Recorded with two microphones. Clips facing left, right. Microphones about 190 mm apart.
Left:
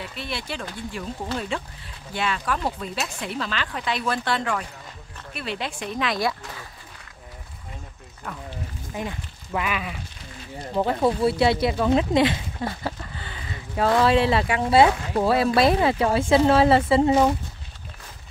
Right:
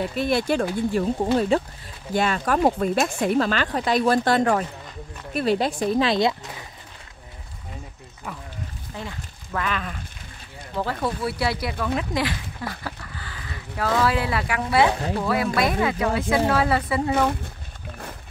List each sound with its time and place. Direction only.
0.0 s speech: 45° right (ahead or behind); by 6.6 s 20° right (ahead or behind)
8.3 s speech: 5° right (ahead or behind)
8.9 s speech: 15° left (ahead or behind)
10.7 s a woman's voice: 20° left (ahead or behind)